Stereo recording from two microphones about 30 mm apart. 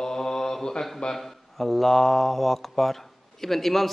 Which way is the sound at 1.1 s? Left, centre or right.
Centre.